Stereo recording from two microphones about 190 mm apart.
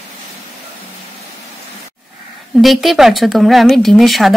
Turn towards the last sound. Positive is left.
turn(degrees=0)  # may be behind; listen again after turning